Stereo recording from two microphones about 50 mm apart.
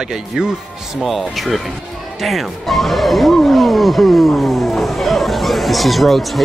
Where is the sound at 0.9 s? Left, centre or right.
Centre.